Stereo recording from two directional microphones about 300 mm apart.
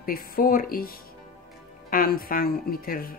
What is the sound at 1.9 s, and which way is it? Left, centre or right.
Speech, left.